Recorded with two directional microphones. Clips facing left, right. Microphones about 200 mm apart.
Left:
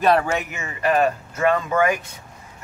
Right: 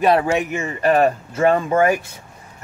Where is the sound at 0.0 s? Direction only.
15° right (ahead or behind).